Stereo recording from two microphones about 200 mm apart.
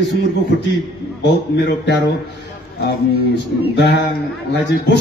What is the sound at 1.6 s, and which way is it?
Speech, 60° left (ahead or behind).